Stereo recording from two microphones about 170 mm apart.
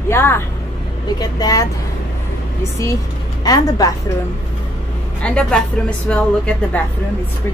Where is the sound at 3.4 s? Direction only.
20° left (ahead or behind).